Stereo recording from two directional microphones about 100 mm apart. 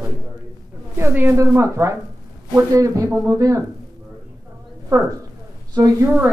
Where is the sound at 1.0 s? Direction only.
20° right (ahead or behind).